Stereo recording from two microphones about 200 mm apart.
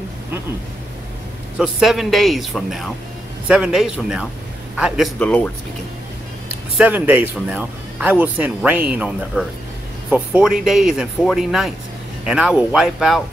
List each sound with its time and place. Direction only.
1.6 s speech: centre (ahead or behind)
6.8 s speech: 10° right (ahead or behind)